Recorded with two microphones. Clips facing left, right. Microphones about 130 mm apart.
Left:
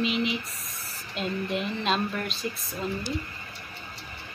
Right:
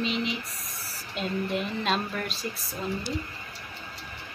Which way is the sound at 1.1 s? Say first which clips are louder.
Even; centre (ahead or behind).